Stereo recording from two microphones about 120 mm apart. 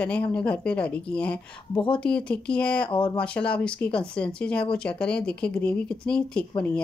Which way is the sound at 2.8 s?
45° left (ahead or behind).